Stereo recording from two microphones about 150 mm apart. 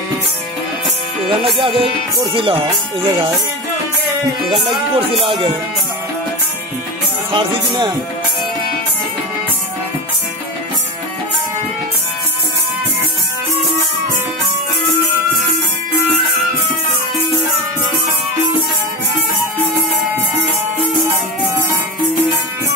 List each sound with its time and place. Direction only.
1.4 s speech: 35° right (ahead or behind)
4.5 s speech: 35° right (ahead or behind)
7.3 s music: 30° right (ahead or behind)